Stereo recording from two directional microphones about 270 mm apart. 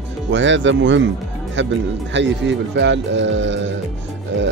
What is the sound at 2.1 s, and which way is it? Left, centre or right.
Speech, right.